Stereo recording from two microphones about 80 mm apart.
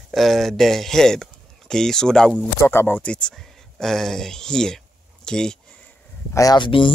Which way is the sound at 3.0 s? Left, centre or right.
Centre.